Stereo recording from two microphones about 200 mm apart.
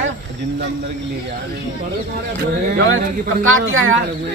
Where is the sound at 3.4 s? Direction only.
85° right.